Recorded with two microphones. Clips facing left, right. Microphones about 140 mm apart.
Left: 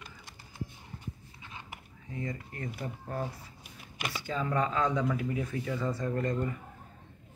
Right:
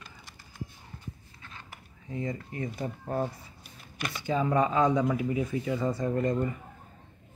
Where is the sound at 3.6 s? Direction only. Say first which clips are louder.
Right 2 dB; 15° left (ahead or behind).